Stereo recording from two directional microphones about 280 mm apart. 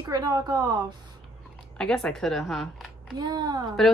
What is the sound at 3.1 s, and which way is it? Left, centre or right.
Speech, centre.